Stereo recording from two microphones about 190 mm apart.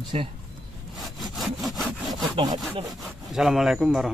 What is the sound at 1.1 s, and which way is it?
Sawing, centre (ahead or behind).